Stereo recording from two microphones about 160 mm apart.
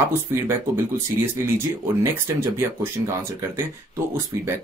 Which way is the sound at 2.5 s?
15° right (ahead or behind).